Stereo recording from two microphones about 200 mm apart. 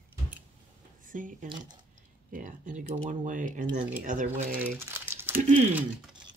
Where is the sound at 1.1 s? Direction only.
40° right (ahead or behind).